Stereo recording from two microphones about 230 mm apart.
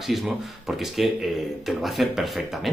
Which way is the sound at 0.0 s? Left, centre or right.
Centre.